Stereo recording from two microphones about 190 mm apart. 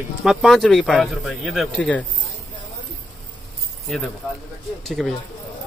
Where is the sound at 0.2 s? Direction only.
Centre (ahead or behind).